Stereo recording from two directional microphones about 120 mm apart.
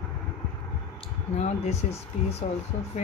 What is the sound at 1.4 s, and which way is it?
Speech, 60° left (ahead or behind).